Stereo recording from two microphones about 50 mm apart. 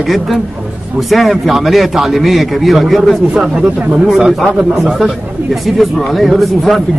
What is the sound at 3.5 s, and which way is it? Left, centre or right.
Speech, right.